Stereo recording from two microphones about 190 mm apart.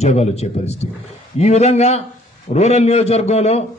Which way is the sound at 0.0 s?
35° left (ahead or behind).